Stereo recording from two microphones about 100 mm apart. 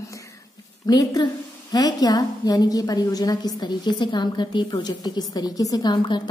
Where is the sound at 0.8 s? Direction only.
40° left (ahead or behind).